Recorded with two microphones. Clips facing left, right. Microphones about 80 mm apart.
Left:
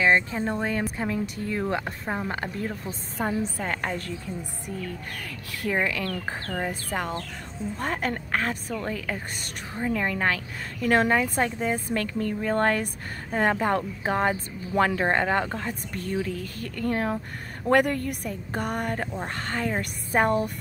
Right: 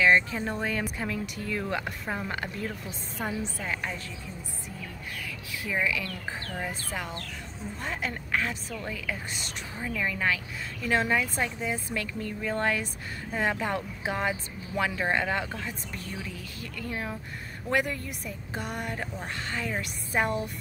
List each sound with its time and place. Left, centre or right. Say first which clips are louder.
0.0 s a woman's voice: left 1 dB; left
5.6 s a woman's voice: left 3 dB; left